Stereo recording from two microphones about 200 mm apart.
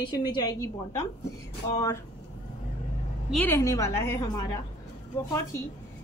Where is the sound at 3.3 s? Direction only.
10° left (ahead or behind).